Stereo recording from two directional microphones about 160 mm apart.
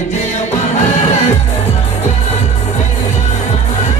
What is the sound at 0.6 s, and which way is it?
Music, 45° left (ahead or behind).